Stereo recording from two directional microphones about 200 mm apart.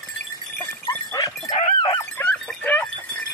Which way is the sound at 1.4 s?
35° left (ahead or behind).